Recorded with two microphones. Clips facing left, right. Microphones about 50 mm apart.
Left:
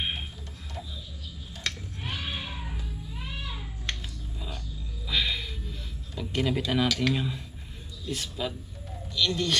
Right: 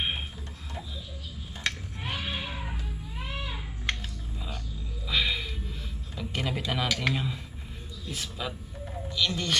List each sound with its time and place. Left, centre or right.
1.6 s a sound: centre
5.0 s music: centre
7.2 s a man's voice: centre